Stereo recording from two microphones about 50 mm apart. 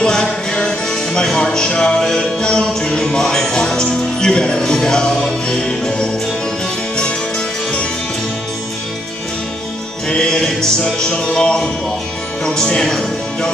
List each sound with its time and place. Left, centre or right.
0.0 s music: centre
7.0 s music: centre
10.0 s music: centre
12.4 s speech: centre